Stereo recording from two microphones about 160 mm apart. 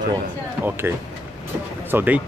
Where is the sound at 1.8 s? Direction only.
10° right (ahead or behind).